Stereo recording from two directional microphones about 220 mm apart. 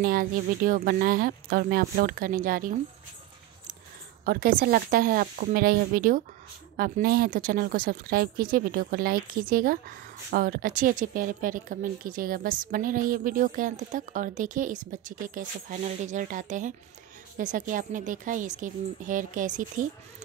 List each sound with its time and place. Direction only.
0.0 s a woman's voice: 40° right (ahead or behind)
4.2 s a woman's voice: 45° right (ahead or behind)